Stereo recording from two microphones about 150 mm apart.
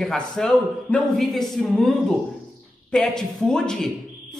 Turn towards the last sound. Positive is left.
turn(degrees=5)  # may be behind; listen again after turning